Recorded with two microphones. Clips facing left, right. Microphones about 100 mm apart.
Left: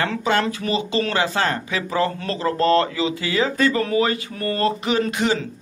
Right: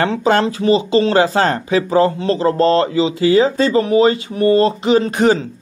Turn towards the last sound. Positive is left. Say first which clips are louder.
# right 7 dB
turn(degrees=-25)  # may be behind; listen again after turning